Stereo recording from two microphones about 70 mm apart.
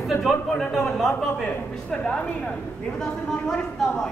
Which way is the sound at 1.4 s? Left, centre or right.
Centre.